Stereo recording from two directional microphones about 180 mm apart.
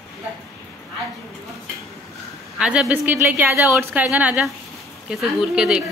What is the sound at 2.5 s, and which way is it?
A woman's voice, 5° right (ahead or behind).